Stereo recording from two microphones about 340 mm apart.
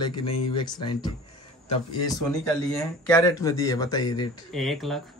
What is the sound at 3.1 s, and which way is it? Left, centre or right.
Speech, centre.